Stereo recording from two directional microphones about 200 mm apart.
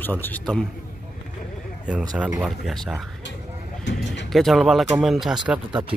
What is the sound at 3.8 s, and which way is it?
Mechanisms, 60° left (ahead or behind).